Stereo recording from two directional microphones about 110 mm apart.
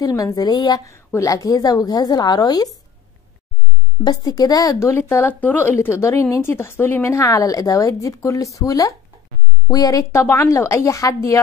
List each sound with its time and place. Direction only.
0.0 s a woman's voice: 30° left (ahead or behind)
4.0 s a woman's voice: 35° left (ahead or behind)